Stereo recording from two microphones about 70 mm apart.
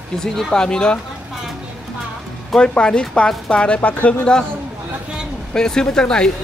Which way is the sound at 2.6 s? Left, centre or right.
Centre.